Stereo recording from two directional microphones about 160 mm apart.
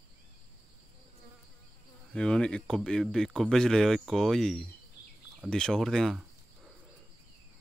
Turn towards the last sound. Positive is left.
turn(degrees=0)  # may be behind; listen again after turning